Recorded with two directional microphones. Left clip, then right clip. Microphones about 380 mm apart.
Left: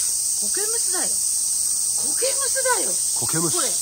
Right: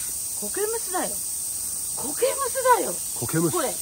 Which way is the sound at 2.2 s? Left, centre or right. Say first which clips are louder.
Right 3 dB; centre.